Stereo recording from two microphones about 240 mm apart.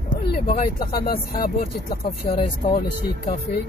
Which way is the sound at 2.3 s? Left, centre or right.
Left.